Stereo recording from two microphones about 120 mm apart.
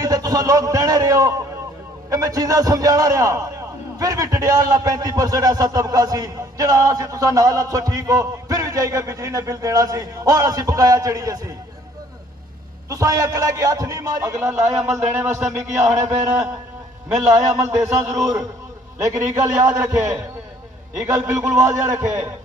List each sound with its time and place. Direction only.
0.0 s a man's voice: 30° right (ahead or behind)
12.9 s a man's voice: 30° right (ahead or behind)
14.5 s a man's voice: 10° right (ahead or behind)
17.2 s a man's voice: 25° right (ahead or behind)